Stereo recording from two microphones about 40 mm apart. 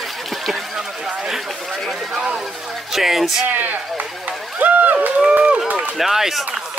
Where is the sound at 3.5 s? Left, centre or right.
Right.